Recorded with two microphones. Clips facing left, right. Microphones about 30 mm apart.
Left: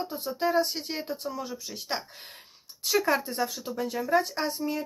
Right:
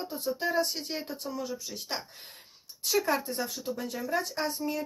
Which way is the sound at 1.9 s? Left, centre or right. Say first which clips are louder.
Left 4 dB; left.